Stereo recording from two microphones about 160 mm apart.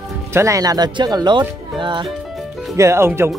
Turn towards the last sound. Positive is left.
turn(degrees=-15)  # may be behind; listen again after turning